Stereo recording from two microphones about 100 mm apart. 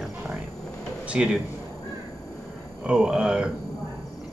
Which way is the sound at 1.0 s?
10° right (ahead or behind).